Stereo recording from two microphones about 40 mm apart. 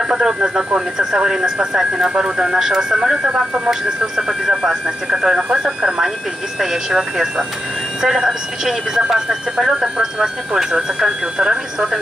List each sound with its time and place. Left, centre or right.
0.1 s speech: centre